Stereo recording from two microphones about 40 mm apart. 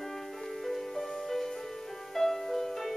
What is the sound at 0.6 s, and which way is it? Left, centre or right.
Music, centre.